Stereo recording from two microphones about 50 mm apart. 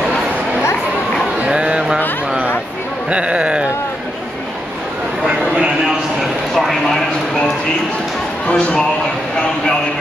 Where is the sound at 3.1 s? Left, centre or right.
Right.